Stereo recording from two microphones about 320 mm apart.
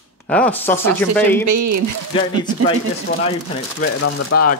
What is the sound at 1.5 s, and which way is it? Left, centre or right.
Speech, right.